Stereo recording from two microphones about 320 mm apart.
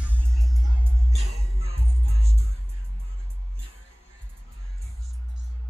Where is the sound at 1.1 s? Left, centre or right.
Centre.